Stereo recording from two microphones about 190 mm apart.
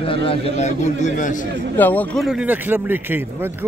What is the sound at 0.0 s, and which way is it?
A man's voice, 30° left (ahead or behind).